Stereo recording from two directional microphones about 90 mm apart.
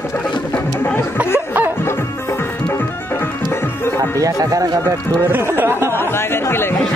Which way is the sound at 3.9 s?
40° right (ahead or behind).